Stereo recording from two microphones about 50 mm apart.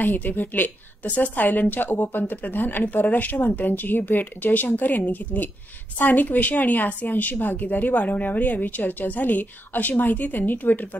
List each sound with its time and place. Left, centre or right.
0.0 s a woman's voice: left